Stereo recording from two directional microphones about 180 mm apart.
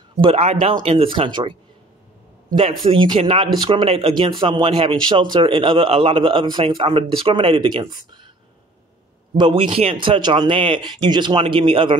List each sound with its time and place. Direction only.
0.2 s speech: 35° right (ahead or behind)
2.9 s a man's voice: 30° right (ahead or behind)
9.4 s a man's voice: 30° right (ahead or behind)